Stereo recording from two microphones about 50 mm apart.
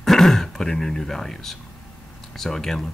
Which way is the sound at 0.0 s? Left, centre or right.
Centre.